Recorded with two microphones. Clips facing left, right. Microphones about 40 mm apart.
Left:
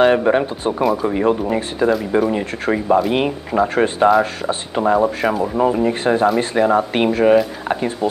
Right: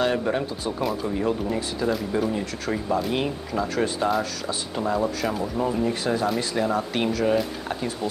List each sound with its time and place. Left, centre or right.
0.0 s speech: left